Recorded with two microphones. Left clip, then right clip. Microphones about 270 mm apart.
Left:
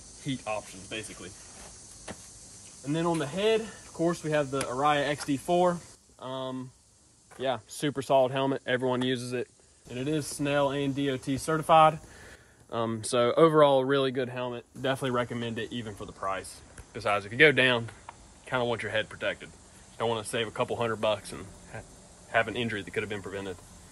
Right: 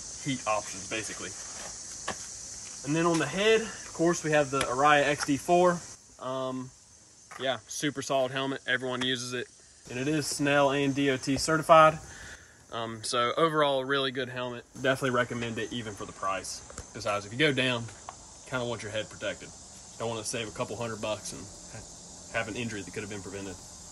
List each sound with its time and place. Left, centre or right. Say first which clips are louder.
0.2 s speech: right 4 dB; centre
2.9 s speech: right 2 dB; centre
8.0 s speech: left 5 dB; left
9.8 s speech: right 1 dB; centre
12.7 s speech: left 3 dB; left
14.4 s speech: right 1 dB; centre